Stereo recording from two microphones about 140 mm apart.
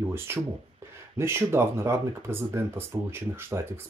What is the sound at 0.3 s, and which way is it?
Speech, 20° right (ahead or behind).